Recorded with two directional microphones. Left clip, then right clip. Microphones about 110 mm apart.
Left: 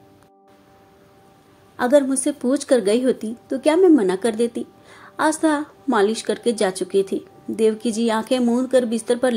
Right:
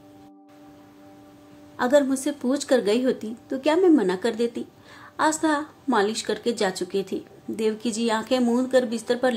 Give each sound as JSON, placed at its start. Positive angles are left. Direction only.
{"t": 1.8, "sound": "a woman's voice", "side_deg": 25}